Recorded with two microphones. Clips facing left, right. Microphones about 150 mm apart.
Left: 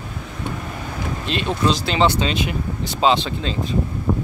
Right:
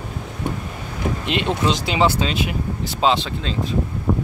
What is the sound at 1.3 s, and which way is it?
Speech, 20° right (ahead or behind).